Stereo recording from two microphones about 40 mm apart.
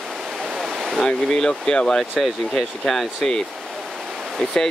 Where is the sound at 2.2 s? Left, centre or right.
Centre.